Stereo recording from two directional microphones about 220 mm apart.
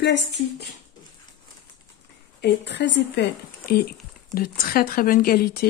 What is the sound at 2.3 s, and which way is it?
Speech, 50° left (ahead or behind).